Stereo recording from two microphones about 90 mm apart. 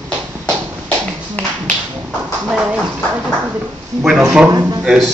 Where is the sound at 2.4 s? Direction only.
10° right (ahead or behind).